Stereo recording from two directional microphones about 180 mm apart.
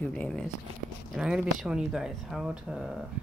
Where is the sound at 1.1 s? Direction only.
5° right (ahead or behind).